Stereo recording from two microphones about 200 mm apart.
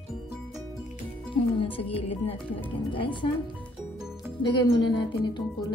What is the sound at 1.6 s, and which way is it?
Speech, 30° left (ahead or behind).